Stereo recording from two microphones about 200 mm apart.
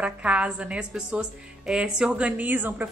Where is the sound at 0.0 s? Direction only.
5° right (ahead or behind).